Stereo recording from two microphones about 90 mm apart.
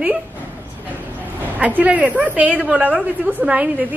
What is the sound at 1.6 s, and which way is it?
A woman's voice, 15° right (ahead or behind).